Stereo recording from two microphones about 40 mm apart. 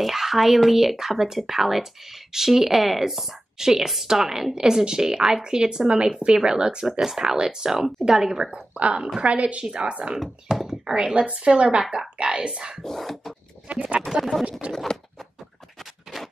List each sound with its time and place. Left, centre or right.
0.0 s a woman's voice: centre
8.7 s a woman's voice: right
10.1 s speech: centre
11.1 s a woman's voice: right
11.8 s a woman's voice: centre
12.2 s a woman's voice: right
12.8 s speech: centre
13.7 s a woman's voice: right
15.8 s a sound: centre